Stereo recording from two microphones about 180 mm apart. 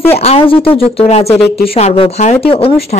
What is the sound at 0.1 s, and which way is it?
Speech, 35° left (ahead or behind).